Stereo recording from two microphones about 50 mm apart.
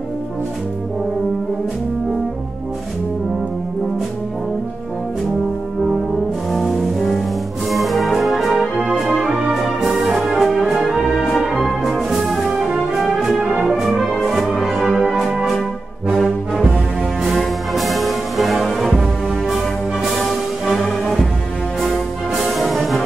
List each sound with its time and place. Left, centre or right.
6.5 s brass instrument: centre
7.7 s music: centre
8.5 s music: centre
9.0 s music: centre
16.2 s brass instrument: centre
17.7 s music: centre
20.2 s music: centre
22.3 s brass instrument: centre